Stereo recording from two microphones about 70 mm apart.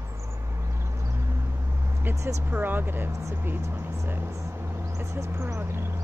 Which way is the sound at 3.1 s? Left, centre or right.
Right.